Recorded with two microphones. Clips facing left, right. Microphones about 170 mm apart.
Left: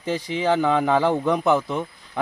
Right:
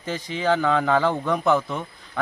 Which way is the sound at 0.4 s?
15° left (ahead or behind).